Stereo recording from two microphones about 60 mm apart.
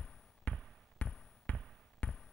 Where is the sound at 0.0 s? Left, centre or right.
Left.